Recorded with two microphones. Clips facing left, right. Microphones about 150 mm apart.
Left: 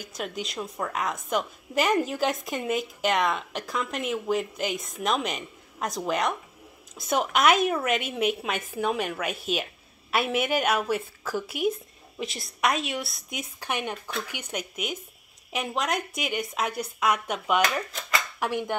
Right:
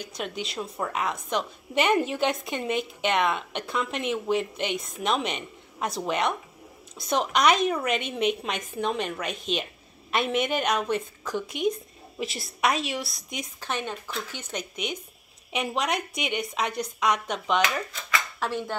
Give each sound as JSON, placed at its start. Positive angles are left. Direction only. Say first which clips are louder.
{"t": 0.2, "sound": "a woman's voice", "louder": "even", "side_deg": 0}